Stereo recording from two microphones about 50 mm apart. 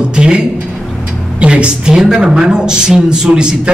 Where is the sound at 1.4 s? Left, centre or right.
Right.